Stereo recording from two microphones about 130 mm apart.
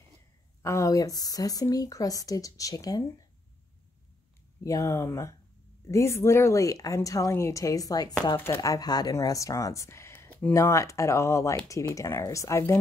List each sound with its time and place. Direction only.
0.6 s speech: 25° left (ahead or behind)
4.6 s speech: 25° left (ahead or behind)